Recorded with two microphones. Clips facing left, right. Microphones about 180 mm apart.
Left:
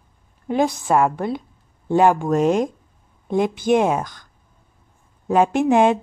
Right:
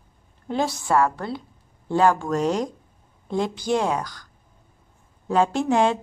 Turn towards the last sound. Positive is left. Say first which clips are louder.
# left 5 dB
turn(degrees=15)  # may be behind; listen again after turning